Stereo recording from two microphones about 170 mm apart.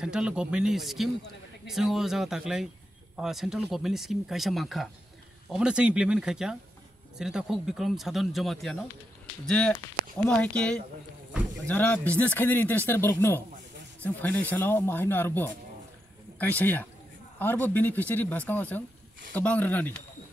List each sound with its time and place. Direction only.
0.0 s speech: 5° right (ahead or behind)